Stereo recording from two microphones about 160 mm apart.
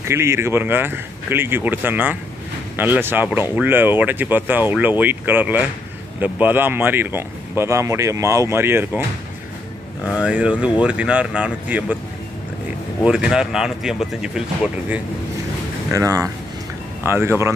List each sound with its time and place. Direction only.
0.0 s speech: 15° right (ahead or behind)
10.0 s speech: 5° right (ahead or behind)
13.0 s speech: 5° right (ahead or behind)
15.9 s speech: 20° right (ahead or behind)